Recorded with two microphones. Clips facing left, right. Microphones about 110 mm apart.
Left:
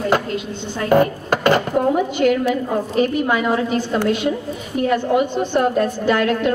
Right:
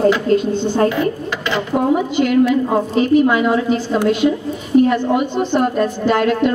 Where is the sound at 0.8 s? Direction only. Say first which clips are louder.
Left 2 dB; 50° left (ahead or behind).